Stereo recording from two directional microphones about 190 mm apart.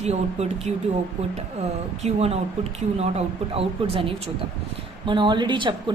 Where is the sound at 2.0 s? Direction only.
35° right (ahead or behind).